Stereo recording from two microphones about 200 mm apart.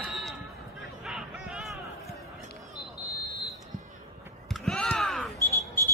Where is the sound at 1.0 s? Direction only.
Centre (ahead or behind).